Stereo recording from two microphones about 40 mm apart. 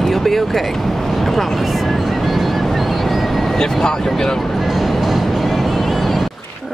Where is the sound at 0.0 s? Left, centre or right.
Centre.